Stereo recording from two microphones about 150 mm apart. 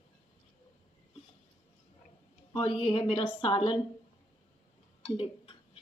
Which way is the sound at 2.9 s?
35° left (ahead or behind).